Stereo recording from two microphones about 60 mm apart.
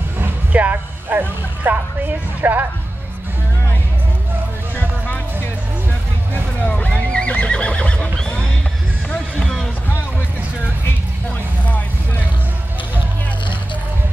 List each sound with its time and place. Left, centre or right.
0.2 s a sound: right
4.7 s music: left
6.6 s neigh: left
6.9 s horse: centre